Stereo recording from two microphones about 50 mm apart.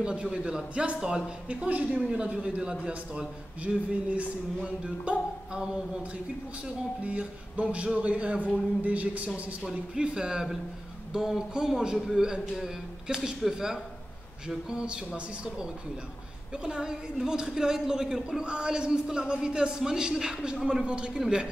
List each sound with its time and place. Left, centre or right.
0.0 s a man's voice: centre
1.5 s a man's voice: right
7.0 s a man's voice: right
9.9 s a man's voice: centre